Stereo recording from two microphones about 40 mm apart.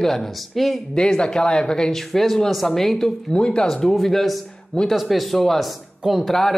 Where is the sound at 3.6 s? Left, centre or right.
Centre.